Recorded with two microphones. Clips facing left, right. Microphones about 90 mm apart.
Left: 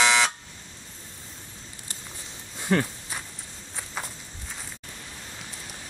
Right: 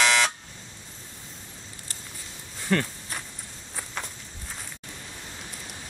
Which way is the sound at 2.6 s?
15° left (ahead or behind).